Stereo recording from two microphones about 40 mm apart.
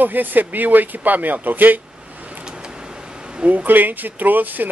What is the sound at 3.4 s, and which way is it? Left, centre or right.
Speech, right.